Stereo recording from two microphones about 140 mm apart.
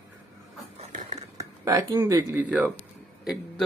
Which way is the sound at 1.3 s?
25° right (ahead or behind).